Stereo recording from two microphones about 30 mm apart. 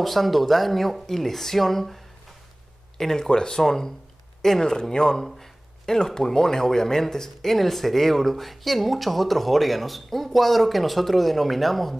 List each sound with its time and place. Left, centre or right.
0.0 s speech: centre
3.0 s speech: centre
3.6 s speech: centre